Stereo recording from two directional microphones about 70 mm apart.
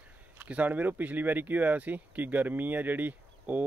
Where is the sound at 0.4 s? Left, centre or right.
Right.